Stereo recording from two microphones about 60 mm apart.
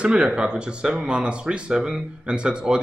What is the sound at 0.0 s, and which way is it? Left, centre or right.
Speech, centre.